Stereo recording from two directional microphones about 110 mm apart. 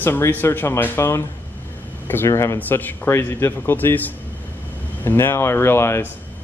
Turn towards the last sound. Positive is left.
turn(degrees=25)  # may be behind; listen again after turning